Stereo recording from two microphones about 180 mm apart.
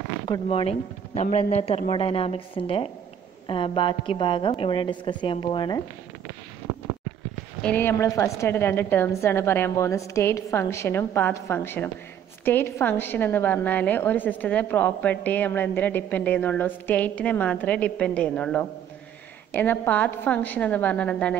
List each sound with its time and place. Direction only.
0.3 s a woman's voice: 30° left (ahead or behind)
7.6 s a woman's voice: 10° left (ahead or behind)